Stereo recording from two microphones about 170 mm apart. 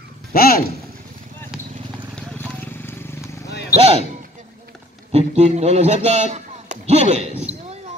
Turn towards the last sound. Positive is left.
turn(degrees=-40)  # may be behind; listen again after turning